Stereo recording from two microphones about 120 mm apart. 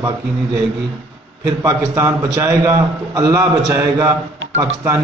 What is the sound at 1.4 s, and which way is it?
A man's voice, 25° right (ahead or behind).